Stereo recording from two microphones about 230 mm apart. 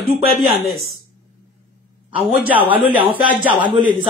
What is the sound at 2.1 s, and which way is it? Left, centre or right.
Speech, centre.